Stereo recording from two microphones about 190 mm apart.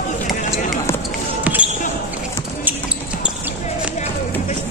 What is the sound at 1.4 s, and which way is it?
Basketball bounce, 5° right (ahead or behind).